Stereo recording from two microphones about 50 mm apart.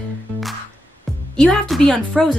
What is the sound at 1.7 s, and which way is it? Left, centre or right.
Speech, centre.